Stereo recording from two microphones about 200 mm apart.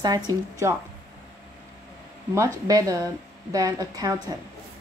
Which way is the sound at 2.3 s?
15° right (ahead or behind).